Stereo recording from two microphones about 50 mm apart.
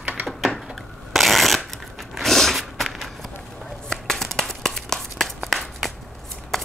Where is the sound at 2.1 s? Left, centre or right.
Centre.